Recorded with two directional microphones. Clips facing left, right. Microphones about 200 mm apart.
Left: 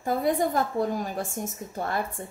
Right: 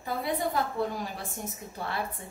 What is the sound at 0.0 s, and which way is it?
A woman's voice, 50° left (ahead or behind).